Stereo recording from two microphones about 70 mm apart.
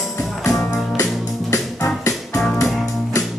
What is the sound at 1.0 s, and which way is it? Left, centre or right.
Music, left.